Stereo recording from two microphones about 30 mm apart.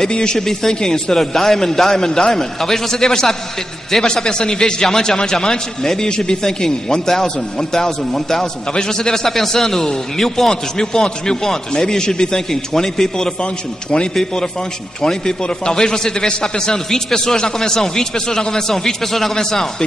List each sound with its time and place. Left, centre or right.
0.1 s a man's voice: left
0.5 s a man's voice: centre
13.4 s a man's voice: left
14.1 s a man's voice: left